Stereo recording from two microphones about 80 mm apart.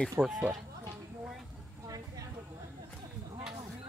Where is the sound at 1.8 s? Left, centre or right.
Right.